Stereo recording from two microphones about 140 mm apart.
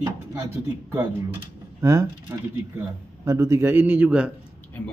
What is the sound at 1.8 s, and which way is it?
Speech, 25° right (ahead or behind).